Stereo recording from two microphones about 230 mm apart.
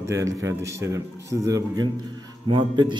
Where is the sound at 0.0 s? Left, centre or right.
Centre.